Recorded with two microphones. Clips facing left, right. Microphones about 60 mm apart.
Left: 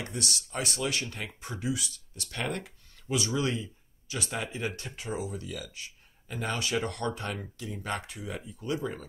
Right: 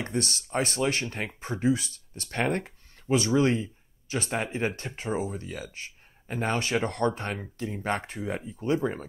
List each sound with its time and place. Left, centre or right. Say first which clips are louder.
0.0 s speech: right 5 dB; right